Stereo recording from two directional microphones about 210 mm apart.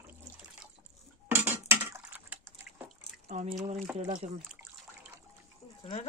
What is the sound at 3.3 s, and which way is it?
Speech, 35° right (ahead or behind).